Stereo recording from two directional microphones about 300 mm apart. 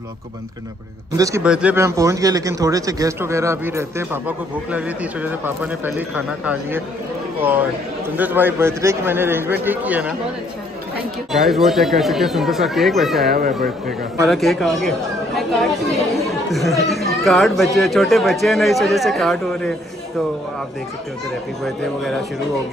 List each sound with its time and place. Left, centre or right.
1.1 s speech: centre
8.2 s speech: centre
11.3 s speech: centre
13.3 s speech: right
14.2 s speech: centre
21.6 s speech: centre